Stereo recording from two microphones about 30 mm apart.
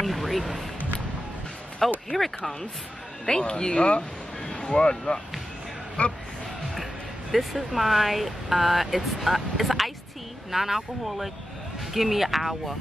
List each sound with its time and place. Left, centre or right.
0.0 s a sound: centre
1.8 s speech: centre
3.3 s speech: left
6.0 s speech: left
6.7 s speech: centre